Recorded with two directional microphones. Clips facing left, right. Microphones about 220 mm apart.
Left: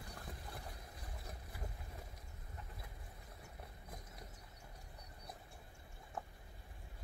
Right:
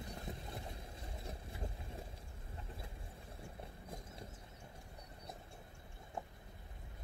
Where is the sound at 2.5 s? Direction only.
30° right (ahead or behind).